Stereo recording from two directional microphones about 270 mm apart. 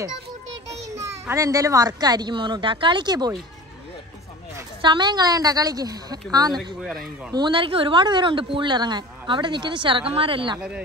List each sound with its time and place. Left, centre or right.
0.9 s speech: centre
4.6 s speech: centre
6.8 s a man's voice: centre
7.3 s speech: centre